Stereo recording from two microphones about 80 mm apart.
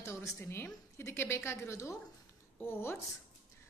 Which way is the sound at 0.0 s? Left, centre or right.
Left.